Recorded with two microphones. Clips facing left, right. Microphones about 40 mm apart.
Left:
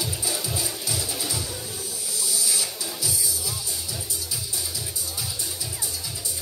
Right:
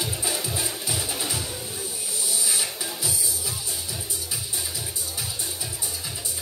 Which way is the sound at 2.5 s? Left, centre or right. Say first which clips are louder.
Right 1 dB; right.